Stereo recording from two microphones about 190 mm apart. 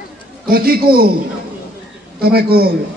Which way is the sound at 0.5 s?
55° right (ahead or behind).